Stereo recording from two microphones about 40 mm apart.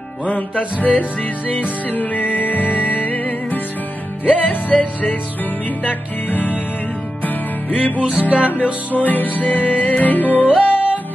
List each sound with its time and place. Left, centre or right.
0.3 s music: left
4.7 s music: centre
5.9 s music: left
7.7 s music: left
8.2 s music: right
8.9 s music: left